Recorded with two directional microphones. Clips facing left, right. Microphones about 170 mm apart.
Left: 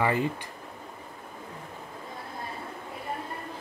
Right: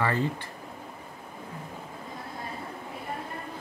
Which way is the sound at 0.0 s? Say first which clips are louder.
Left 1 dB; 15° left (ahead or behind).